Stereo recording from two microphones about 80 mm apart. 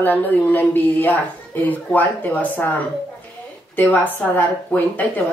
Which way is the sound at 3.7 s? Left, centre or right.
Left.